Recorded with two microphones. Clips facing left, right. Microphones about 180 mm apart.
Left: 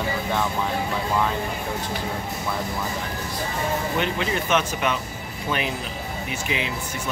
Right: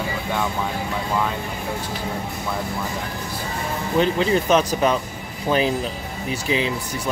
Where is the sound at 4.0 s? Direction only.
35° right (ahead or behind).